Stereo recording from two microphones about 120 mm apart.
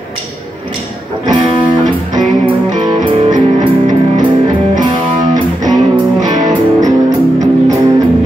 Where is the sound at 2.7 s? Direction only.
35° right (ahead or behind).